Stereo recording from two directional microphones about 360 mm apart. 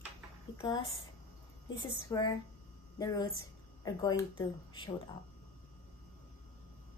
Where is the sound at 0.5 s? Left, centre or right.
Centre.